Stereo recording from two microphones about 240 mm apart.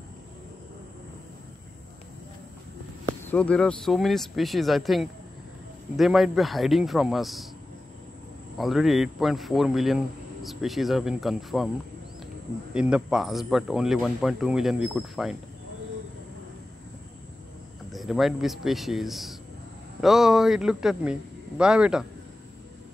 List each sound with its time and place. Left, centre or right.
3.2 s a man's voice: centre
8.5 s a man's voice: centre
12.7 s a man's voice: centre
17.9 s a man's voice: centre